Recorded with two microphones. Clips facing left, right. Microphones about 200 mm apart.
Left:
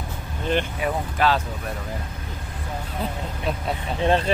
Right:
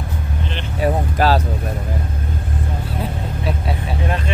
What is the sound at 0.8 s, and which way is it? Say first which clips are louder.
Vehicle: right 8 dB; 40° right (ahead or behind).